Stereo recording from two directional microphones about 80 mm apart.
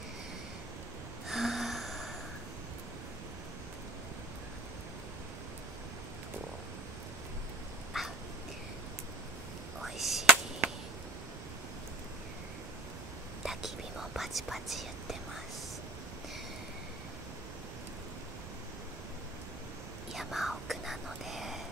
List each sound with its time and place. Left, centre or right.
1.3 s gasp: centre
8.0 s dog: centre
9.8 s a sound: centre
10.6 s a sound: right
13.4 s whispering: centre
20.2 s whispering: centre